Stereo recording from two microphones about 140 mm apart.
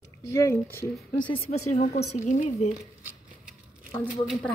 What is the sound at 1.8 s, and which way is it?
Speech, 55° left (ahead or behind).